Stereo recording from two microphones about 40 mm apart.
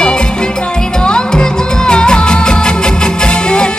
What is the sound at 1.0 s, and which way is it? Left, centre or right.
Music, centre.